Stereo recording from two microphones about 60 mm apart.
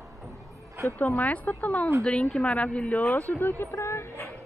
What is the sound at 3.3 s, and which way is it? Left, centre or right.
Speech, left.